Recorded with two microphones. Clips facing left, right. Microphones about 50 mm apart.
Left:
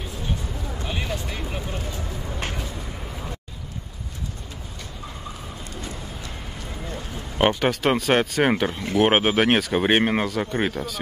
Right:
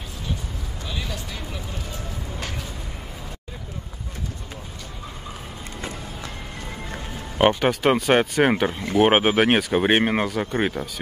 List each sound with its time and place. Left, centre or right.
0.8 s speech: left
7.3 s speech: centre
8.6 s speech: right
9.0 s speech: centre